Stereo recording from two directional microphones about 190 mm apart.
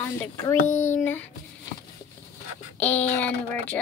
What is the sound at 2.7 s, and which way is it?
Speech, 10° left (ahead or behind).